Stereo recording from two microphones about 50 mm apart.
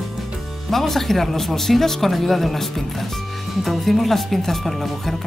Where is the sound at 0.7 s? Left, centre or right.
Centre.